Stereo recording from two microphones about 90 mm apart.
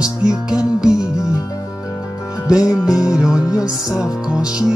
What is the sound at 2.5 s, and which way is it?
Music, 40° left (ahead or behind).